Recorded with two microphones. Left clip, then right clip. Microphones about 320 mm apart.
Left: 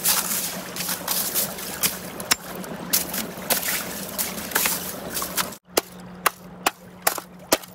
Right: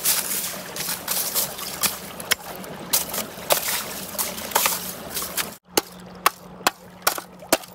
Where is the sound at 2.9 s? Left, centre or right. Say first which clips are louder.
Right 1 dB; centre.